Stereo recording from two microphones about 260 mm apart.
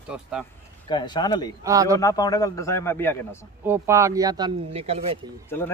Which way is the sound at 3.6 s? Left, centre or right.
Centre.